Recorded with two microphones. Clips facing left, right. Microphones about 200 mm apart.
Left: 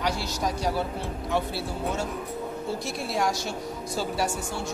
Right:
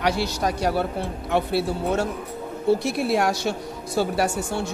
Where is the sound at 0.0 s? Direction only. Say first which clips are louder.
Right 5 dB; 65° right (ahead or behind).